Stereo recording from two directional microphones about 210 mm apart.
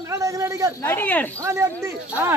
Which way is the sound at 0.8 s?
10° left (ahead or behind).